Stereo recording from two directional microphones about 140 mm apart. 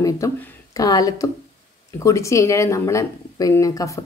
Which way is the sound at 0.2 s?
20° left (ahead or behind).